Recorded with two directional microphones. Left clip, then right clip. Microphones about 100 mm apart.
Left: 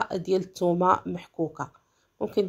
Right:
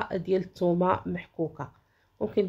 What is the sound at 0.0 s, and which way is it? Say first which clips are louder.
Speech: left 2 dB; 25° left (ahead or behind).